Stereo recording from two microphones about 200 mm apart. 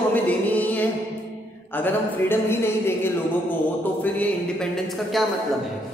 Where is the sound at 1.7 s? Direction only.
10° left (ahead or behind).